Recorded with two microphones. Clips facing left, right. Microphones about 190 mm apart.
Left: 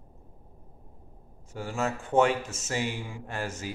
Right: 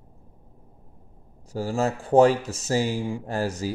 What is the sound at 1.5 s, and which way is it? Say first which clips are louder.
Speech: right 6 dB; 35° right (ahead or behind).